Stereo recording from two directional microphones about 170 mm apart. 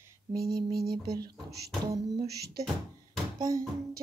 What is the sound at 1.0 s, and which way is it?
Music, 20° right (ahead or behind).